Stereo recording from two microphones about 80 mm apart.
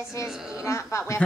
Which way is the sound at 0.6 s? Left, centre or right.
Left.